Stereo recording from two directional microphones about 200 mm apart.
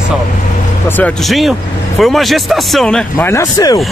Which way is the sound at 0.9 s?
10° left (ahead or behind).